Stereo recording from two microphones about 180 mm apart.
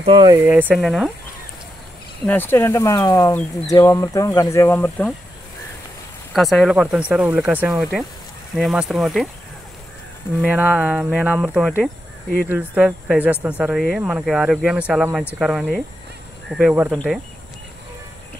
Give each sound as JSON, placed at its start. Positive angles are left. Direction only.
{"t": 0.0, "sound": "speech", "side_deg": -30}
{"t": 0.4, "sound": "speech", "side_deg": -10}
{"t": 2.2, "sound": "speech", "side_deg": 10}
{"t": 6.3, "sound": "speech", "side_deg": 0}
{"t": 10.4, "sound": "speech", "side_deg": -10}